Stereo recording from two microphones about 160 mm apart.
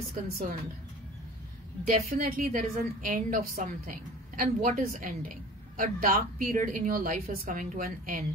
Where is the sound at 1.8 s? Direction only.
55° right (ahead or behind).